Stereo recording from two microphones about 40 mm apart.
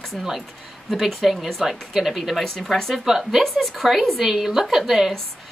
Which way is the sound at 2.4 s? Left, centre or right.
Centre.